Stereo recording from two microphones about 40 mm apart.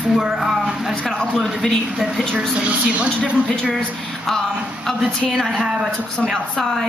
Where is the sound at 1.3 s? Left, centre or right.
Centre.